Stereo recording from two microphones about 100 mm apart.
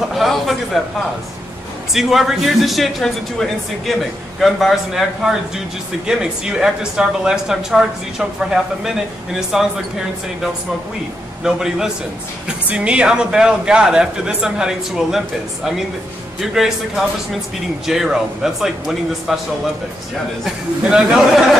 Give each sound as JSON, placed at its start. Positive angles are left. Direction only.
{"t": 0.1, "sound": "a man's voice", "side_deg": 0}
{"t": 2.0, "sound": "speech", "side_deg": -5}
{"t": 11.4, "sound": "speech", "side_deg": -5}
{"t": 20.9, "sound": "speech", "side_deg": -5}